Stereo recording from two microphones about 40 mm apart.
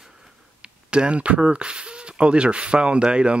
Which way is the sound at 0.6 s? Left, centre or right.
Right.